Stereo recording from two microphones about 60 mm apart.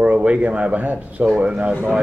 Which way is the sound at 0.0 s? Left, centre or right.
Right.